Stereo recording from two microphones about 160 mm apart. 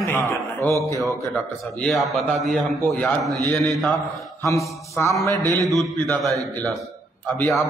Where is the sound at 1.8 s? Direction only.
Centre (ahead or behind).